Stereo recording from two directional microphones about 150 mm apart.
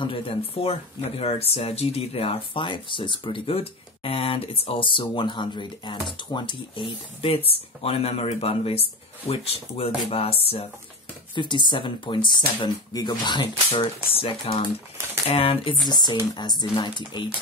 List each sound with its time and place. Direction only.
0.0 s speech: 40° left (ahead or behind)
11.3 s speech: 30° left (ahead or behind)